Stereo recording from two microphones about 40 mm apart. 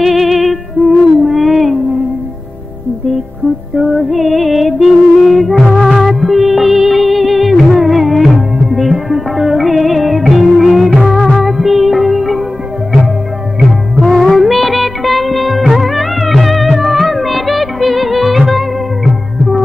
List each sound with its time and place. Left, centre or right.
0.0 s music: centre
0.8 s music: right
1.2 s a sound: centre
3.7 s music: centre
14.0 s music of bollywood: centre
16.3 s music: centre